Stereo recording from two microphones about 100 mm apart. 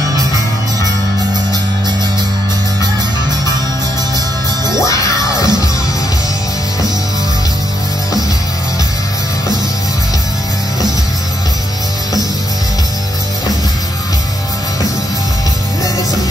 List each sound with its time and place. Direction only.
4.7 s music: 30° left (ahead or behind)